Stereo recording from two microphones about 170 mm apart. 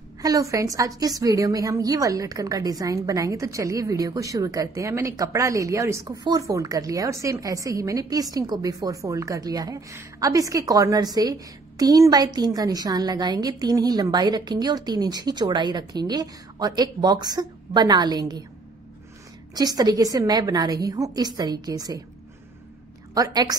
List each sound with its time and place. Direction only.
0.2 s a woman's voice: 20° right (ahead or behind)
19.5 s a woman's voice: 20° right (ahead or behind)
23.1 s a woman's voice: 20° right (ahead or behind)